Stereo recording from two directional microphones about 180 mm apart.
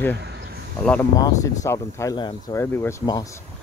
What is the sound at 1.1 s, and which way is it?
Speech, 20° left (ahead or behind).